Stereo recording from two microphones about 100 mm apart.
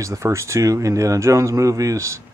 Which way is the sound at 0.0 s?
30° right (ahead or behind).